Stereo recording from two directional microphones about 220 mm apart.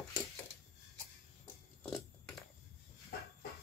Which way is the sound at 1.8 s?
Centre (ahead or behind).